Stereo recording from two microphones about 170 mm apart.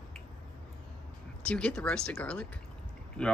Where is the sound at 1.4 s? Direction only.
5° left (ahead or behind).